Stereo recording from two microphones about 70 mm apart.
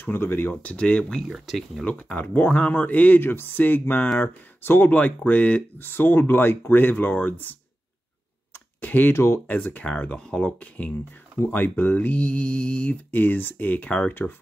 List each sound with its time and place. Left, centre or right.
0.0 s speech: left
0.6 s speech: centre
1.2 s speech: centre
1.9 s speech: centre
8.8 s speech: left
9.1 s speech: left
9.5 s speech: left
11.3 s speech: left